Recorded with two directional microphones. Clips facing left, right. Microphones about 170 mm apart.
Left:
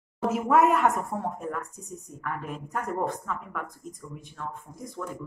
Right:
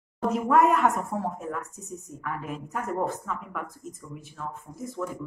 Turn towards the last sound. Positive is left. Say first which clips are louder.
# right 4 dB
turn(degrees=-5)  # may be behind; listen again after turning